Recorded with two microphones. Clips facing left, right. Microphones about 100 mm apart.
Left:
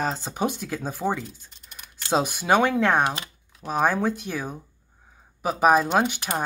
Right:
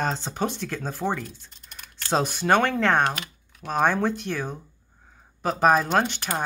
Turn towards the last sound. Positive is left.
turn(degrees=10)  # may be behind; listen again after turning